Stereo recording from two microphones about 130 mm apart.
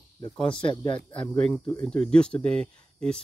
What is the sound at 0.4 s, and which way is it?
Speech, 5° left (ahead or behind).